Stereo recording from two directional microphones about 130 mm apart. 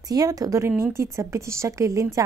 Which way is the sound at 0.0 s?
30° right (ahead or behind).